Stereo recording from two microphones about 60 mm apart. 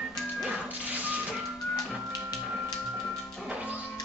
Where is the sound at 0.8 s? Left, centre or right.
Right.